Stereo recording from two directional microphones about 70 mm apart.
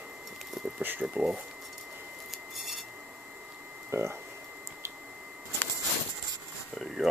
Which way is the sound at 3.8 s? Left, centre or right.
Right.